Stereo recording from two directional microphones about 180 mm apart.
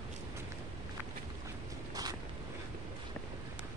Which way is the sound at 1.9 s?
20° right (ahead or behind).